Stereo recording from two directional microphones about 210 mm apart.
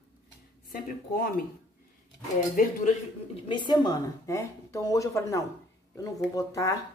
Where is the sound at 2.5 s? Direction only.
35° left (ahead or behind).